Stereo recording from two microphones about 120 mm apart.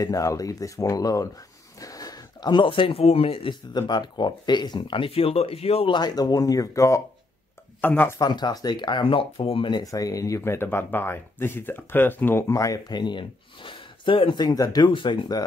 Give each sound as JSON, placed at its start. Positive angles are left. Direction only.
{"t": 0.0, "sound": "speech", "side_deg": 30}
{"t": 3.7, "sound": "speech", "side_deg": 35}
{"t": 5.9, "sound": "speech", "side_deg": 35}
{"t": 7.8, "sound": "speech", "side_deg": 15}
{"t": 8.2, "sound": "speech", "side_deg": 35}